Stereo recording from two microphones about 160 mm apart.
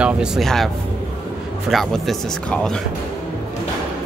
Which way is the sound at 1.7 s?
Centre (ahead or behind).